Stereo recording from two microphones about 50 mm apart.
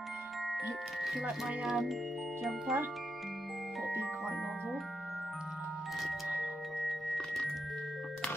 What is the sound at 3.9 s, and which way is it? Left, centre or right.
Music, right.